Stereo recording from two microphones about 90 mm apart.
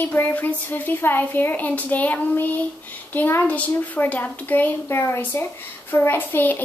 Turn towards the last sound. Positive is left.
turn(degrees=20)  # may be behind; listen again after turning